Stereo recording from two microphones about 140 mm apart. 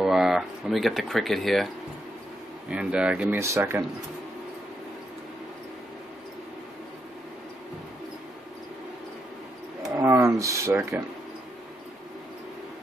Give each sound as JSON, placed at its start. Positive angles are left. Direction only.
{"t": 0.0, "sound": "speech", "side_deg": -5}
{"t": 2.7, "sound": "speech", "side_deg": -5}
{"t": 3.3, "sound": "speech", "side_deg": -20}
{"t": 10.0, "sound": "a sound", "side_deg": -20}